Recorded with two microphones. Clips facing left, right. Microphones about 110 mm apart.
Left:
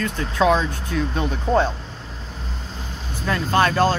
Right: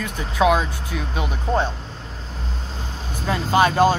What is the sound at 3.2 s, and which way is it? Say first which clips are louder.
Speech: right 1 dB; 15° right (ahead or behind).